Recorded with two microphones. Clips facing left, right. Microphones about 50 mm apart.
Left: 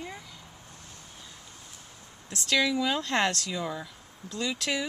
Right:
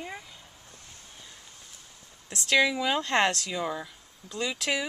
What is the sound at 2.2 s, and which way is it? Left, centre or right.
Speech, centre.